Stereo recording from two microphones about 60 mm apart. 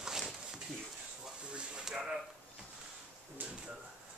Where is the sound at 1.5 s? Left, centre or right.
Centre.